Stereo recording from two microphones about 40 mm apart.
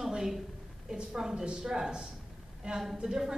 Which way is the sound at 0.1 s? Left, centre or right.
Centre.